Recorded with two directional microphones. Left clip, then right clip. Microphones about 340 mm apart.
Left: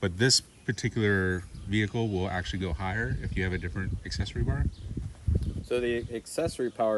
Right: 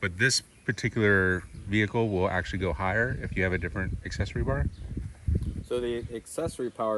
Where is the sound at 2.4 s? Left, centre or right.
Left.